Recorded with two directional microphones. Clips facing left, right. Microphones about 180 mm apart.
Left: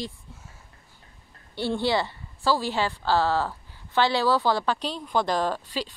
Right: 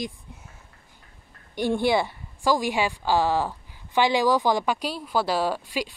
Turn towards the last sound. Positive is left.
turn(degrees=-10)  # may be behind; listen again after turning